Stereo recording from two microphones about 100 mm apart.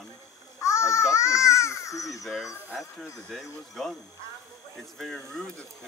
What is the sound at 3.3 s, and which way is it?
Speech, centre (ahead or behind).